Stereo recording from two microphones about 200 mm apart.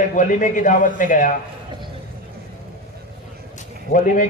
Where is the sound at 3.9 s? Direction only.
40° left (ahead or behind).